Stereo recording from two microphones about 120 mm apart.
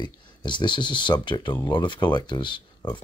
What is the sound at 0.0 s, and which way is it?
Speech, 40° left (ahead or behind).